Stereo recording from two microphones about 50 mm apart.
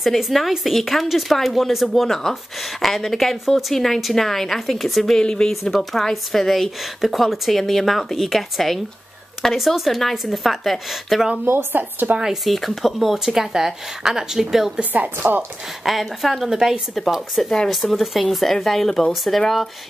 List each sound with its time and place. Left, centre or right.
0.0 s speech: centre
5.2 s speech: centre
5.5 s speech: centre
11.4 s speech: right
12.4 s speech: centre
14.8 s speech: right
15.1 s speech: right
15.8 s speech: centre
16.4 s speech: centre
17.6 s speech: centre